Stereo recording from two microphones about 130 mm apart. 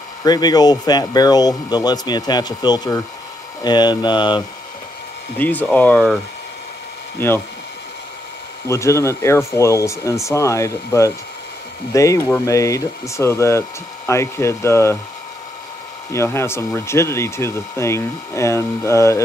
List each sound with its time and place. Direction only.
0.2 s speech: 30° left (ahead or behind)
5.4 s speech: 15° left (ahead or behind)
7.2 s speech: 15° left (ahead or behind)
8.6 s speech: 20° left (ahead or behind)
16.1 s speech: 20° left (ahead or behind)